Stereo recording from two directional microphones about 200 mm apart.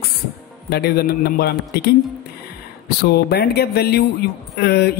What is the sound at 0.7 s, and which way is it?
Speech, 50° left (ahead or behind).